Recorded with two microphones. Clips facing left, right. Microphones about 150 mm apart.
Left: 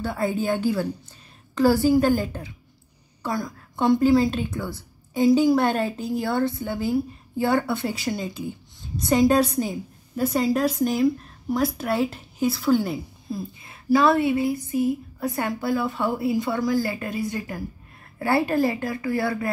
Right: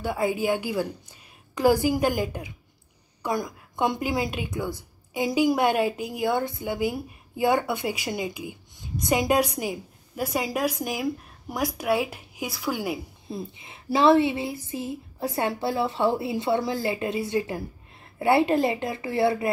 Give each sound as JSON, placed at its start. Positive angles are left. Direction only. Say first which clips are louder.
{"t": 0.0, "sound": "a woman's voice", "louder": "even", "side_deg": -10}